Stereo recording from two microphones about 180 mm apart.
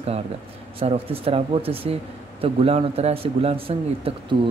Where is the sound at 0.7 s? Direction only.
30° right (ahead or behind).